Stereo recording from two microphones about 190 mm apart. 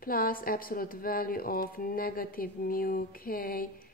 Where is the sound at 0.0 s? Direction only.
50° left (ahead or behind).